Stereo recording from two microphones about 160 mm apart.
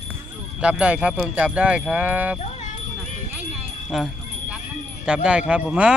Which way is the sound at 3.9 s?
Centre (ahead or behind).